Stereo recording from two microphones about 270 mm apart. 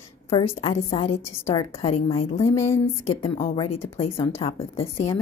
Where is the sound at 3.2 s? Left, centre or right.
Left.